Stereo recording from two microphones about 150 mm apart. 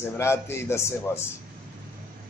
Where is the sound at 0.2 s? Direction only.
15° left (ahead or behind).